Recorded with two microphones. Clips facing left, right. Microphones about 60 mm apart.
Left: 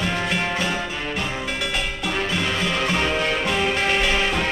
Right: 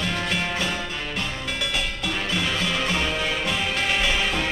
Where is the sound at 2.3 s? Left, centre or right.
Centre.